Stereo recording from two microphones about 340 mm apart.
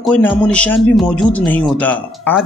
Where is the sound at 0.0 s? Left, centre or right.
Centre.